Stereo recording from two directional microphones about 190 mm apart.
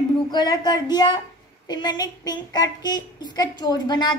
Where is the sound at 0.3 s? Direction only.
20° left (ahead or behind).